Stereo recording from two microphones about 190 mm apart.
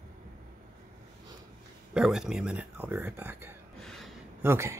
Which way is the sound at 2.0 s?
Centre (ahead or behind).